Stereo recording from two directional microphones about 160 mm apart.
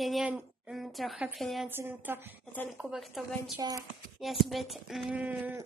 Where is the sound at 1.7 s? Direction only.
15° right (ahead or behind).